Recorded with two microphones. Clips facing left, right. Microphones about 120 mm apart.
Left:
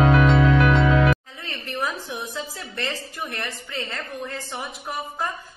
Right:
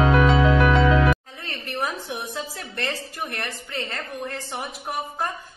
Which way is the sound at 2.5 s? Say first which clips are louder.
Right 1 dB; 55° right (ahead or behind).